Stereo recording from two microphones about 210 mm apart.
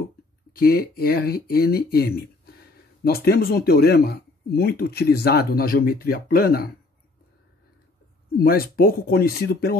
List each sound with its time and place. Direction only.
0.5 s speech: 45° left (ahead or behind)
8.4 s speech: 45° left (ahead or behind)